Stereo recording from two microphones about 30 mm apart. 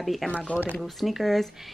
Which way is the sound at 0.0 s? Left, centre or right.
Centre.